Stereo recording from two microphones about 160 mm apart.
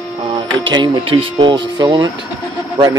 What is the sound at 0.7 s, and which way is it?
Speech, 30° right (ahead or behind).